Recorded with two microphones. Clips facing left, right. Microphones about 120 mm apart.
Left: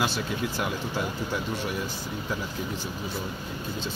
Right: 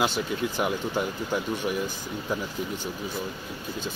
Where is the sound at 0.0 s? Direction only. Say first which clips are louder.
Right 2 dB; 20° right (ahead or behind).